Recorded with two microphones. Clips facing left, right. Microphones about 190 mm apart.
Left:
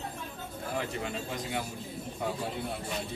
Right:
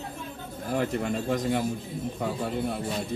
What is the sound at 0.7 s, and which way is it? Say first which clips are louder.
Speech: right 8 dB; 50° right (ahead or behind).